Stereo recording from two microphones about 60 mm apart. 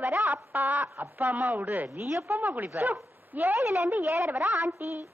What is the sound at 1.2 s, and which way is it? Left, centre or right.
Speech, right.